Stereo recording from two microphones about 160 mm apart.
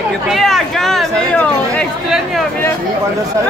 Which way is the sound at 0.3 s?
Centre (ahead or behind).